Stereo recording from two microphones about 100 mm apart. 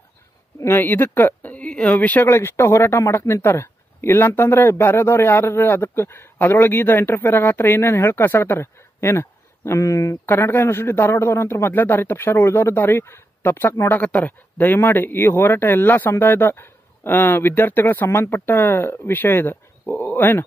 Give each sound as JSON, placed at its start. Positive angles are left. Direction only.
{"t": 0.6, "sound": "speech", "side_deg": 20}
{"t": 10.2, "sound": "speech", "side_deg": 20}